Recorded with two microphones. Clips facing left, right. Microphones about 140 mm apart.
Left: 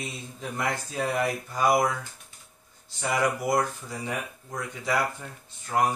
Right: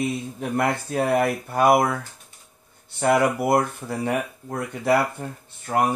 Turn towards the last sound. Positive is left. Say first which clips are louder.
# right 4 dB
turn(degrees=-60)  # may be behind; listen again after turning